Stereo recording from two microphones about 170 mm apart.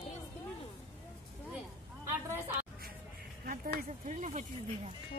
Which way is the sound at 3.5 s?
50° right (ahead or behind).